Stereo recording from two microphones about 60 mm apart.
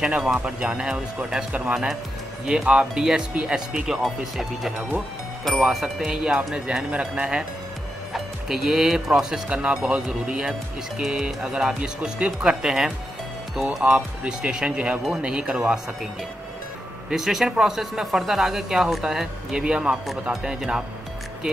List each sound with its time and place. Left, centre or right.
0.0 s speech: centre
17.1 s speech: centre